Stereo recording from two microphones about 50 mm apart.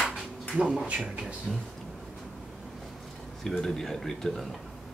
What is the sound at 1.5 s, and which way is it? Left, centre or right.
Speech, centre.